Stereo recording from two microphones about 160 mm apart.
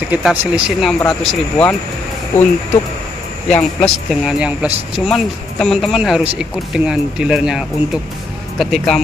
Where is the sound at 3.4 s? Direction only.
5° left (ahead or behind).